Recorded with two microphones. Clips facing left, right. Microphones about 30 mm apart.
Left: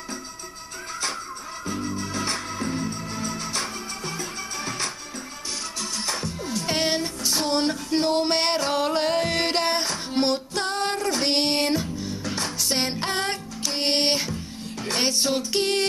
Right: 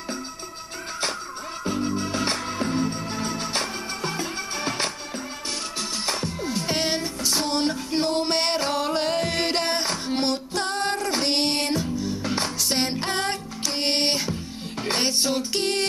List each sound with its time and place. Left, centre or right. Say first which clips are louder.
1.7 s music: right 4 dB; right
6.6 s music: left 2 dB; centre
10.0 s female singing: left 1 dB; centre
11.2 s music: left 2 dB; centre
14.3 s music: right 1 dB; right
15.0 s music: left 1 dB; centre